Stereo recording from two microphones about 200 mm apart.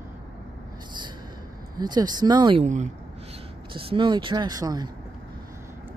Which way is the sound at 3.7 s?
25° right (ahead or behind).